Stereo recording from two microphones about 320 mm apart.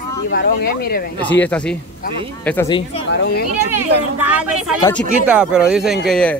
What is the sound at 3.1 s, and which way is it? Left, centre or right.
Speech, left.